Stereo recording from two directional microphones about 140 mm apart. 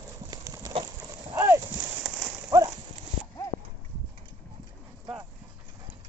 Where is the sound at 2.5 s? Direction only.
25° right (ahead or behind).